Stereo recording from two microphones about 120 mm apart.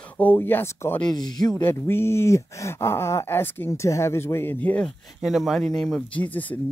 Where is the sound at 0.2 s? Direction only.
15° left (ahead or behind).